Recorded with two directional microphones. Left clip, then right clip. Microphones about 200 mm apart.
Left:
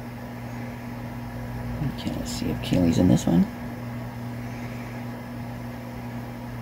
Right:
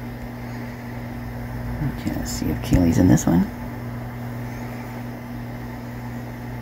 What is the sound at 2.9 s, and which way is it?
Speech, 15° right (ahead or behind).